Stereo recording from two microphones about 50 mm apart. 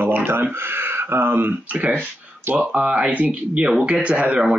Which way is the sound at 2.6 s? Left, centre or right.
Right.